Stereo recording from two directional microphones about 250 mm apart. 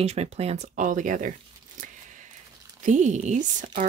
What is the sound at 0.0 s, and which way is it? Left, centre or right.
Speech, right.